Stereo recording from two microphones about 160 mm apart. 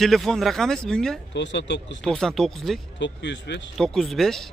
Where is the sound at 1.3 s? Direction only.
90° left.